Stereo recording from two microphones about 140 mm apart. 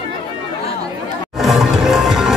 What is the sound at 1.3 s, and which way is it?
Music, centre (ahead or behind).